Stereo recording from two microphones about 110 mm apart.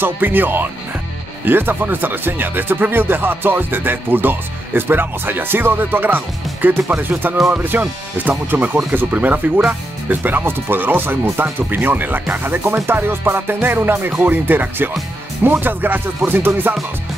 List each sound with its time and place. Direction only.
0.0 s speech: 15° right (ahead or behind)